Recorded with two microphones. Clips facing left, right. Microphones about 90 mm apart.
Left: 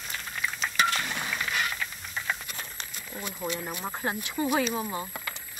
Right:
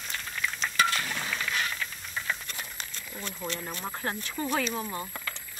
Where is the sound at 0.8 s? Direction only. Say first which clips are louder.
Left 1 dB; 20° left (ahead or behind).